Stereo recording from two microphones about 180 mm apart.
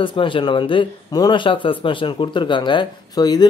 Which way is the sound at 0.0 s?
30° left (ahead or behind).